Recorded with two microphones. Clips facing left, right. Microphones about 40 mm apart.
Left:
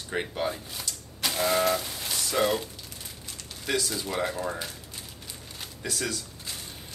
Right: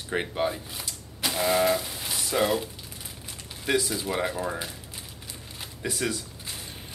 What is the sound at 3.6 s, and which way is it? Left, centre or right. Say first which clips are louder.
Speech: right 3 dB; centre.